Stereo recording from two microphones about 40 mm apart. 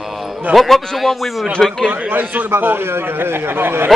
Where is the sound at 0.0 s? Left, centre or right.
Centre.